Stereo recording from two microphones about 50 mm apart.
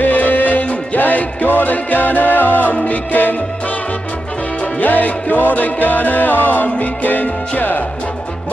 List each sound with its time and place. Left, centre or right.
0.0 s music: left
4.7 s music: left